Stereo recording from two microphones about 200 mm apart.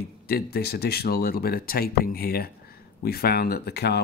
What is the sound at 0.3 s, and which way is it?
Speech, 55° left (ahead or behind).